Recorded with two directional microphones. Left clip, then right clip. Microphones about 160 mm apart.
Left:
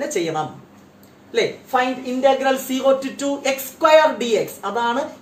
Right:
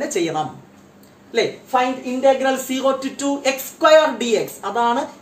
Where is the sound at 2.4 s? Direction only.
25° right (ahead or behind).